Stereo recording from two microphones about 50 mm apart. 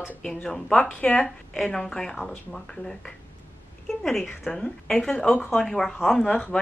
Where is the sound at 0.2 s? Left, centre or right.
Centre.